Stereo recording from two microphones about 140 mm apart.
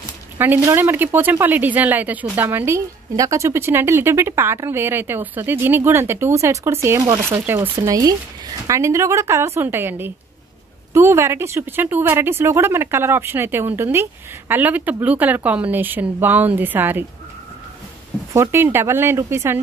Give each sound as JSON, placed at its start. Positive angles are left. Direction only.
{"t": 0.4, "sound": "a woman's voice", "side_deg": -15}
{"t": 18.3, "sound": "speech", "side_deg": -20}